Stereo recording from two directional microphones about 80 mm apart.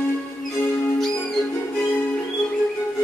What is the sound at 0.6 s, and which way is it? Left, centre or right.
Music, left.